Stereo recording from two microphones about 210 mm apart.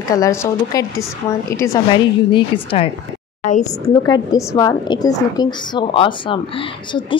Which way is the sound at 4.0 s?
15° left (ahead or behind).